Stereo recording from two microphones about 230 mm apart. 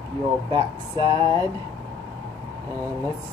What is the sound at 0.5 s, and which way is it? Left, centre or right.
Speech, right.